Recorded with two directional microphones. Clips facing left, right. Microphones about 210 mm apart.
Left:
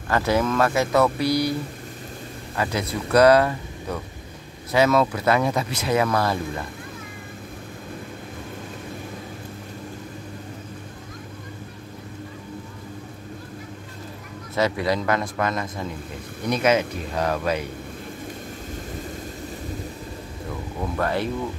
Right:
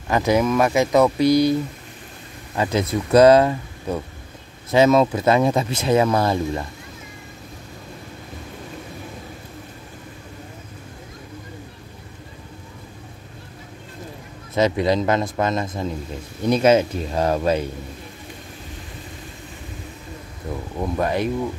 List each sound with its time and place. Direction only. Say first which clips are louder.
0.1 s speech: right 3 dB; 15° right (ahead or behind)
2.5 s speech: right 5 dB; 20° right (ahead or behind)
14.5 s speech: right 4 dB; 20° right (ahead or behind)
20.8 s speech: right 3 dB; 15° right (ahead or behind)